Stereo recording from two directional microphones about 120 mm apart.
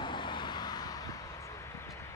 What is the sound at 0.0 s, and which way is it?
Vehicle, 40° left (ahead or behind).